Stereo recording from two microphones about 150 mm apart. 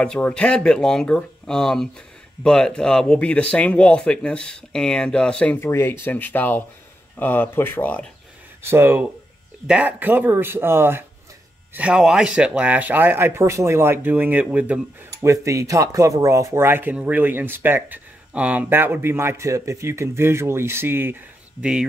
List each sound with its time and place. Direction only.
0.0 s speech: 5° left (ahead or behind)
8.6 s speech: 15° right (ahead or behind)
15.2 s speech: 20° right (ahead or behind)